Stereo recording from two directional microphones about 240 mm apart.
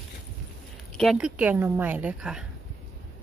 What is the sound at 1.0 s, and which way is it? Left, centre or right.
Speech, centre.